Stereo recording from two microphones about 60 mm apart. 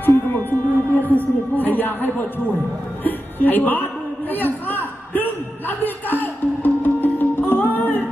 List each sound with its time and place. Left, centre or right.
0.0 s music: left